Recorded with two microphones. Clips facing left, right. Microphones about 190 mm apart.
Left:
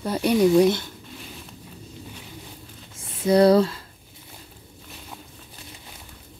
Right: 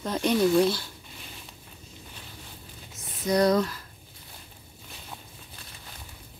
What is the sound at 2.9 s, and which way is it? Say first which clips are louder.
Speech: left 6 dB; 30° left (ahead or behind).